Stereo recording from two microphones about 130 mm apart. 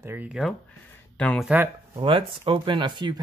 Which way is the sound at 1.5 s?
10° right (ahead or behind).